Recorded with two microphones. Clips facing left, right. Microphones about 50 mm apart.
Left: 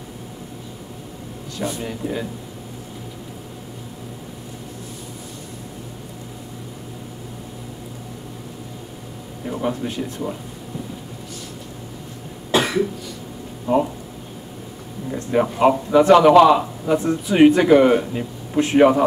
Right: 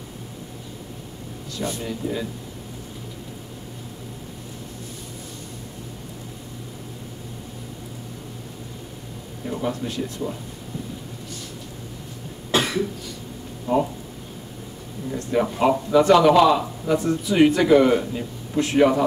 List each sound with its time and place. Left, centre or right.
1.6 s speech: centre
1.9 s speech: left
9.4 s speech: centre
12.4 s cough: centre
13.7 s speech: centre
15.0 s speech: centre